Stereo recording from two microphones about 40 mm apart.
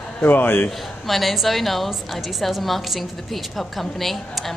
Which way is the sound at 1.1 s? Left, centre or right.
Centre.